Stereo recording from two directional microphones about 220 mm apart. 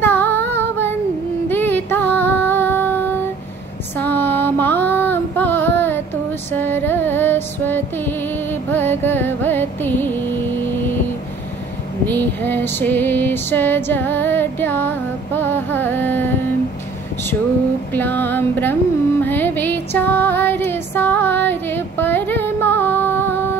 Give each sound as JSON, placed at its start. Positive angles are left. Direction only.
{"t": 0.0, "sound": "female singing", "side_deg": 10}
{"t": 1.5, "sound": "music", "side_deg": 10}
{"t": 4.0, "sound": "female singing", "side_deg": 10}
{"t": 6.5, "sound": "music", "side_deg": 10}
{"t": 12.1, "sound": "female singing", "side_deg": 10}
{"t": 17.9, "sound": "female singing", "side_deg": 10}
{"t": 19.2, "sound": "music", "side_deg": 10}